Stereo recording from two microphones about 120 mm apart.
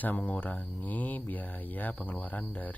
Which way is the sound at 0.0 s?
15° left (ahead or behind).